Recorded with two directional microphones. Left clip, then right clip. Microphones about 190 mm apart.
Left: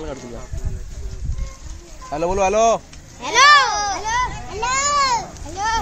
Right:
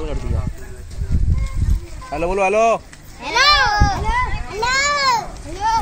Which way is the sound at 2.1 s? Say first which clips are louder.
Right 1 dB; centre (ahead or behind).